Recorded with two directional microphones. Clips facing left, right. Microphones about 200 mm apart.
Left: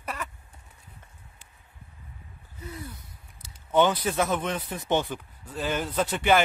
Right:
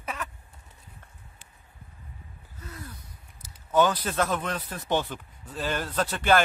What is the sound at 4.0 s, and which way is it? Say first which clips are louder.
Speech: left 1 dB; 10° left (ahead or behind).